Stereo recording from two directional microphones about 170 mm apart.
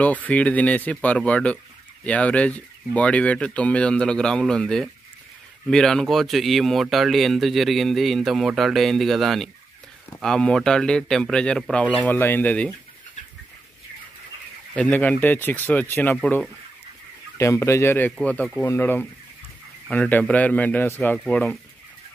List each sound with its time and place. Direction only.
0.0 s speech: 10° left (ahead or behind)
14.8 s speech: 10° left (ahead or behind)